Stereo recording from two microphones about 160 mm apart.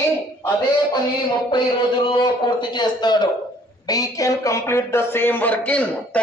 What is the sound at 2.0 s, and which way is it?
A man's voice, 30° left (ahead or behind).